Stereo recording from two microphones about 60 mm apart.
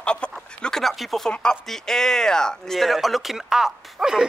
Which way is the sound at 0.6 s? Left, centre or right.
Centre.